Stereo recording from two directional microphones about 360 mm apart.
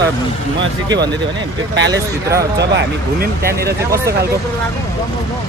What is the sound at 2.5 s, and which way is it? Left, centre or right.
Speech, right.